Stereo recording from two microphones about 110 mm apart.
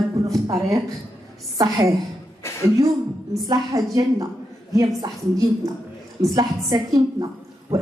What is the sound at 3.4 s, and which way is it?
A man's voice, 35° right (ahead or behind).